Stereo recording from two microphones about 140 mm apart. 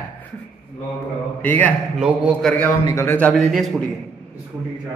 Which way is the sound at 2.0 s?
5° right (ahead or behind).